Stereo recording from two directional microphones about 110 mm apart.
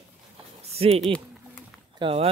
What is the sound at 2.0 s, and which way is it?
Speech, 60° right (ahead or behind).